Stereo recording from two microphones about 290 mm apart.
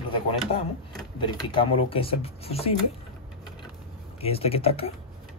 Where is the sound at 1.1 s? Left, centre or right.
Centre.